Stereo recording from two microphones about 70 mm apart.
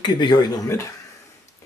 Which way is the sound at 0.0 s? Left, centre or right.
Left.